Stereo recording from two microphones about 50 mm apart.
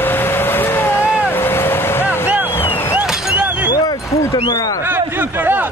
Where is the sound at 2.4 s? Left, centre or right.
Left.